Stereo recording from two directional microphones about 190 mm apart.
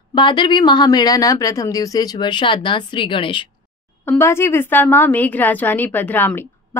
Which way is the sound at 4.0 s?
10° left (ahead or behind).